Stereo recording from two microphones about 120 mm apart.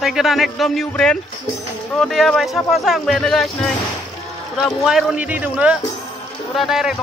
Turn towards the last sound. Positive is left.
turn(degrees=-5)  # may be behind; listen again after turning